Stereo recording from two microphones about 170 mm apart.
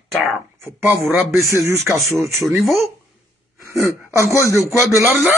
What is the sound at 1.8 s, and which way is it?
Speech, centre (ahead or behind).